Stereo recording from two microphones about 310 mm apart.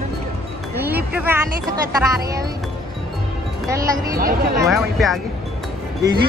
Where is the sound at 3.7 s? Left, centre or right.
Centre.